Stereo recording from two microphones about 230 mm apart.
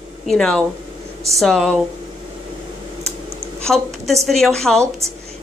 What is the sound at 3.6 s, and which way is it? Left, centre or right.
A woman's voice, centre.